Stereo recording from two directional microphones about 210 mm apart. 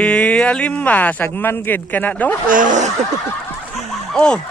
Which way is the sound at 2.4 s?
40° right (ahead or behind).